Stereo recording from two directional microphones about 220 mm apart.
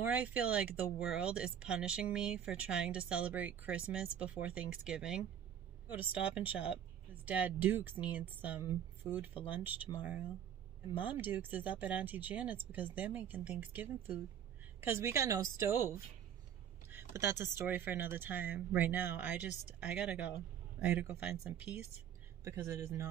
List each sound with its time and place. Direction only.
0.0 s speech: 5° right (ahead or behind)
6.2 s speech: 5° right (ahead or behind)
11.0 s a woman's voice: 10° right (ahead or behind)